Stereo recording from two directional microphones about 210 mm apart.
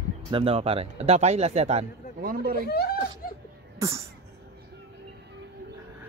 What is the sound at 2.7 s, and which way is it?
Speech, 50° left (ahead or behind).